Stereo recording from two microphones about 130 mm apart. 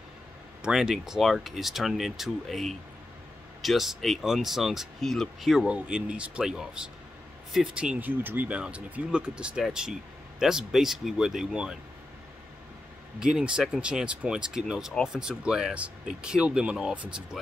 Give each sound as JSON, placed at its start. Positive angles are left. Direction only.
{"t": 0.6, "sound": "speech", "side_deg": -5}
{"t": 13.2, "sound": "speech", "side_deg": -5}